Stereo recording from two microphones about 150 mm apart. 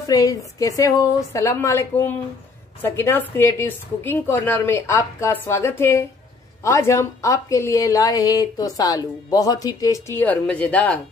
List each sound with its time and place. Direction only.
0.0 s a woman's voice: 25° left (ahead or behind)